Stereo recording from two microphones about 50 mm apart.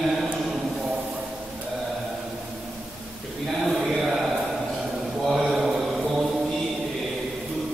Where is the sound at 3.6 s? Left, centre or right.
Centre.